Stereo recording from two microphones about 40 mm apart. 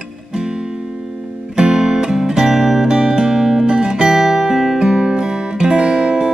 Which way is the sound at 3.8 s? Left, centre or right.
Right.